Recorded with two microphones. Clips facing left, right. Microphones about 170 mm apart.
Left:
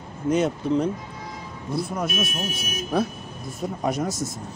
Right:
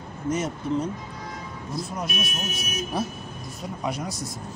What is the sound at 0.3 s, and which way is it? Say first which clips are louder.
Speech: left 5 dB; 65° left (ahead or behind).